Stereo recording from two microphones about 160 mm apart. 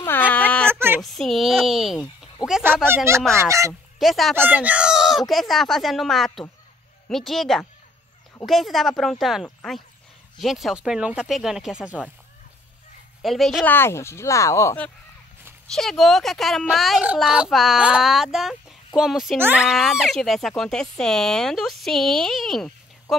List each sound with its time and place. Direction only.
0.3 s a sound: 10° left (ahead or behind)
0.7 s a sound: 15° right (ahead or behind)
1.0 s speech: centre (ahead or behind); by 3.7 s 20° right (ahead or behind)
4.0 s speech: centre (ahead or behind)
4.4 s speech: 10° right (ahead or behind)
13.2 s speech: centre (ahead or behind)
13.7 s speech: 15° left (ahead or behind)
15.7 s speech: centre (ahead or behind)